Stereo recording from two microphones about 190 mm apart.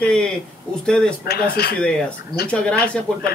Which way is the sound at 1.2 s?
55° left (ahead or behind).